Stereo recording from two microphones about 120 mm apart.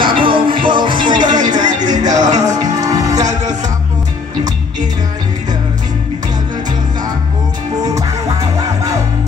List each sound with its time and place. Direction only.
0.0 s music: 45° right (ahead or behind)
7.8 s music: 30° right (ahead or behind)